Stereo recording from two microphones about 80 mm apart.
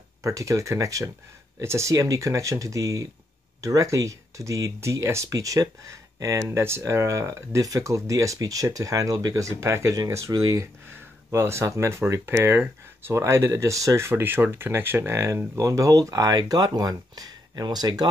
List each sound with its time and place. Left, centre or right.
0.2 s speech: right
10.9 s speech: right